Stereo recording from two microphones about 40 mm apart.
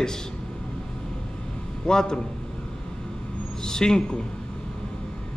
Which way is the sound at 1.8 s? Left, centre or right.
Centre.